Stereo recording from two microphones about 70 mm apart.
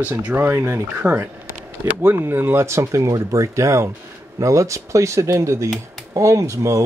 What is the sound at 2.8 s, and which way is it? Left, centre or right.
Speech, right.